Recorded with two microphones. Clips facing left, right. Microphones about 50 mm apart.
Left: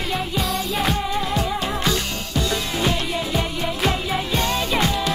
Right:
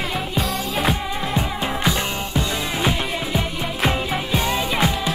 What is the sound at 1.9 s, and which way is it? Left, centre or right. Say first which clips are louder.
Music: right 1 dB; centre.